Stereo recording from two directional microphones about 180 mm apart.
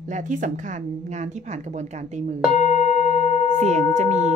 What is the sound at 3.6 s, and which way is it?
Speech, 40° right (ahead or behind).